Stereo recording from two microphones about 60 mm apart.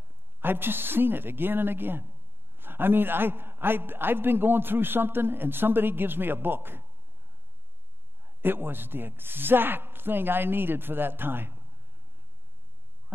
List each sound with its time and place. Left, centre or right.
0.4 s speech: right
8.2 s speech: right